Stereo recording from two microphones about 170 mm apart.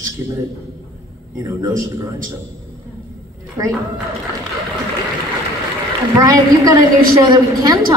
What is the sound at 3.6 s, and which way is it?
Speech, 20° right (ahead or behind).